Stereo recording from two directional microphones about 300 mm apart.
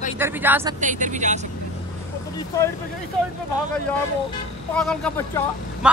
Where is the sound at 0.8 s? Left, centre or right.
Right.